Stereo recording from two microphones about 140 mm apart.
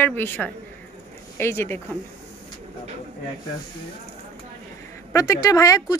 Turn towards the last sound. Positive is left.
turn(degrees=25)  # may be behind; listen again after turning